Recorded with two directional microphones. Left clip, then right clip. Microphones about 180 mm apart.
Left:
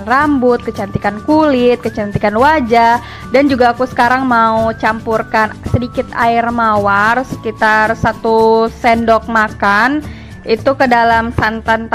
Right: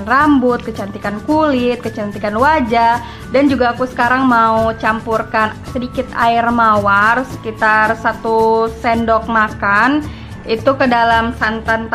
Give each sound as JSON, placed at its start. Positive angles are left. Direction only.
{"t": 0.0, "sound": "speech", "side_deg": 35}